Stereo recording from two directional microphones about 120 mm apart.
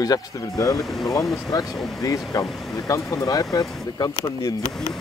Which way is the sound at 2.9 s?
25° left (ahead or behind).